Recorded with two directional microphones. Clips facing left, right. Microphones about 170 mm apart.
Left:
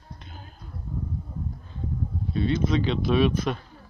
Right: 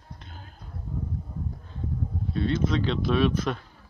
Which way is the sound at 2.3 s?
10° left (ahead or behind).